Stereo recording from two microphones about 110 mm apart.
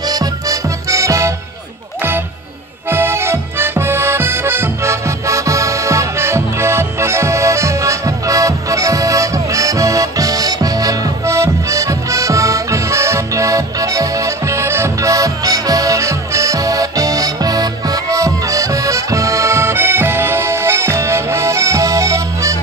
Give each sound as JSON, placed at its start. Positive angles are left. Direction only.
{"t": 0.1, "sound": "music", "side_deg": -35}
{"t": 2.9, "sound": "music", "side_deg": -20}